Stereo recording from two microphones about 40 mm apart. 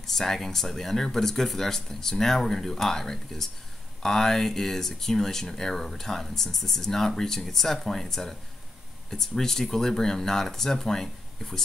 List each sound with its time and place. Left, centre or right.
0.0 s speech: centre